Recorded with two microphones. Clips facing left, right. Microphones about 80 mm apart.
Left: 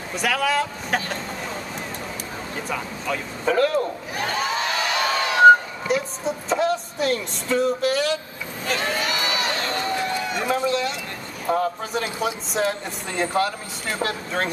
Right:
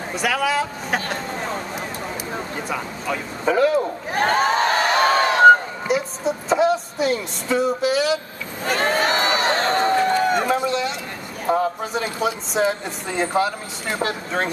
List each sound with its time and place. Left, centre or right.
0.1 s speech: centre
1.0 s speech: right
2.5 s speech: centre
4.1 s a sound: right
5.9 s speech: centre
8.6 s a sound: right
10.5 s speech: centre